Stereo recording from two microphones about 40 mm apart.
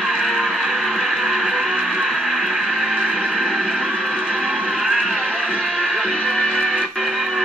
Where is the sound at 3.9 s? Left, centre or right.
Centre.